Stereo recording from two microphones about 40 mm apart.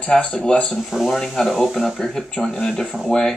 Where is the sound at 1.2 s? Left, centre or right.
Centre.